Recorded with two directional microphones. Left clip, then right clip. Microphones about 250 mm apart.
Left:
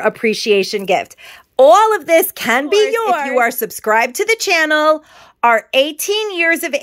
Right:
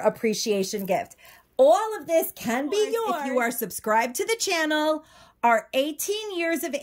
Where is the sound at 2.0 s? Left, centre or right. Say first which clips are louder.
Left 11 dB; left.